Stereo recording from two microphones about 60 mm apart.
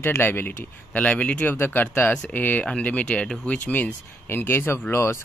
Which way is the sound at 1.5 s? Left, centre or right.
Left.